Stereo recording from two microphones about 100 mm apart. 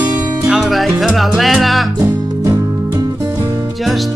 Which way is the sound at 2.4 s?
30° right (ahead or behind).